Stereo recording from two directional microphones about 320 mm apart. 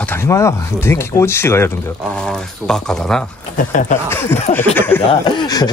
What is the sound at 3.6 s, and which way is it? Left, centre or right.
Speech, left.